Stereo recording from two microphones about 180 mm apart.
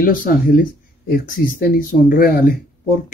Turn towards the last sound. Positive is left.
turn(degrees=50)  # may be behind; listen again after turning